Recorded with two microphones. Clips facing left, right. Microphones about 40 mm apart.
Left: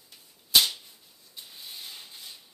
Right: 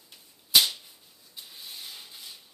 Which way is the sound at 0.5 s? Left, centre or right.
Centre.